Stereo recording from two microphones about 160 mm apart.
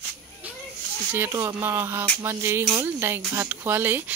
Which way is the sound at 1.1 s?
15° right (ahead or behind).